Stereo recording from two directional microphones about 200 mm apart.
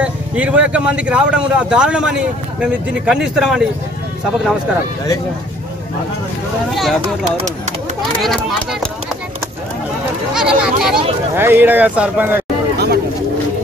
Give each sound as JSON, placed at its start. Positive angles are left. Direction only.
{"t": 0.0, "sound": "speech", "side_deg": -5}
{"t": 6.7, "sound": "speech", "side_deg": 0}
{"t": 8.2, "sound": "speech", "side_deg": 0}
{"t": 10.3, "sound": "speech", "side_deg": -5}
{"t": 12.7, "sound": "a sound", "side_deg": -55}